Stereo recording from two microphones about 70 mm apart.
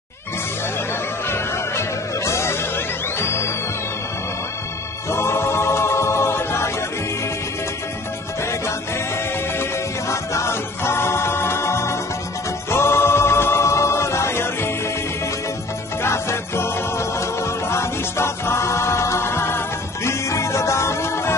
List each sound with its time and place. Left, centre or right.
1.3 s music: left
5.1 s a capella: left
9.6 s music: left
16.0 s music: left